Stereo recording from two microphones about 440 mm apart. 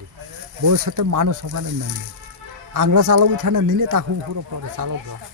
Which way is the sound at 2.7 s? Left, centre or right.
Right.